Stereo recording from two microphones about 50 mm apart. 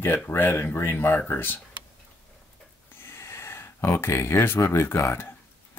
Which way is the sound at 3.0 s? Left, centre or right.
Left.